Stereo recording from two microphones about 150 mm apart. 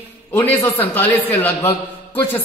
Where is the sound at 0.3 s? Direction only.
15° left (ahead or behind).